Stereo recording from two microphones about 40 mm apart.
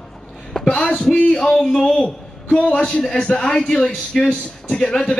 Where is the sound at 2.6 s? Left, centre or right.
Left.